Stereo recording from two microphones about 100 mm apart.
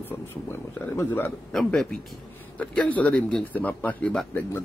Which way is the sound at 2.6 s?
15° left (ahead or behind).